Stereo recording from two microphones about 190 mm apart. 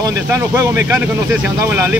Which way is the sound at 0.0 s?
15° right (ahead or behind).